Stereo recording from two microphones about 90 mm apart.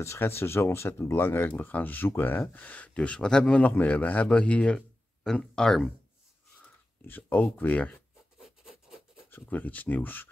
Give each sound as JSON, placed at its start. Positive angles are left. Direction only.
{"t": 0.0, "sound": "speech", "side_deg": 30}
{"t": 7.1, "sound": "speech", "side_deg": 20}
{"t": 8.4, "sound": "rub", "side_deg": -5}
{"t": 9.3, "sound": "speech", "side_deg": 20}